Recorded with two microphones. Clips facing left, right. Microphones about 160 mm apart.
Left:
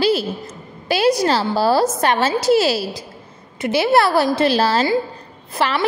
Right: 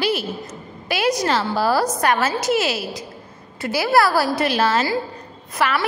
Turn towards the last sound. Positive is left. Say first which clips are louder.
# left 2 dB
turn(degrees=30)  # may be behind; listen again after turning